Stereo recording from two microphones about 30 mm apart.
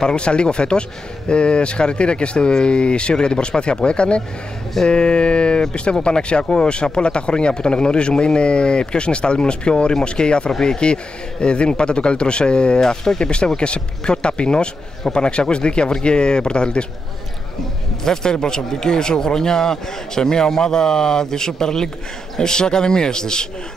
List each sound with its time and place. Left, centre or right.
0.0 s speech: left
12.8 s speech: centre
13.2 s speech: left
18.0 s speech: left